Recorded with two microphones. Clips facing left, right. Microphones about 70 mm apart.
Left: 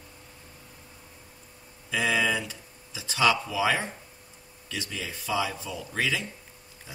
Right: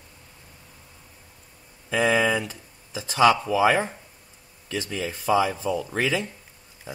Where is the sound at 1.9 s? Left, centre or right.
Right.